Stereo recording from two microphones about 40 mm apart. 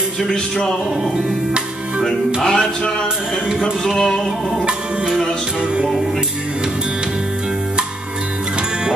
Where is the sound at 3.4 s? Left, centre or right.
Centre.